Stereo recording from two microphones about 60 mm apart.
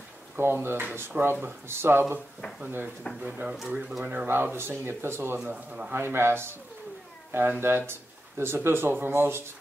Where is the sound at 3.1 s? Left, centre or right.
Left.